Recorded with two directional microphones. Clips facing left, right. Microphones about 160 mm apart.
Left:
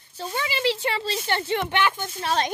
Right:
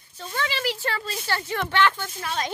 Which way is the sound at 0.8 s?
25° left (ahead or behind).